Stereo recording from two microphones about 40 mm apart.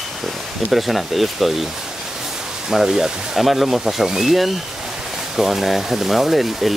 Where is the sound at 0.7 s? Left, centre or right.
Centre.